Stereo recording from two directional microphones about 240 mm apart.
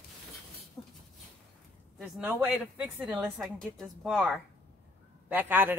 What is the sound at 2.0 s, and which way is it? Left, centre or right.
Speech, centre.